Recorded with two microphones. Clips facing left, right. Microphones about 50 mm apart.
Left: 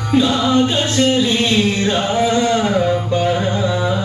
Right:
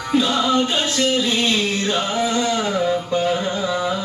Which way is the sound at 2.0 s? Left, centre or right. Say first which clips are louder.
Left 5 dB; left.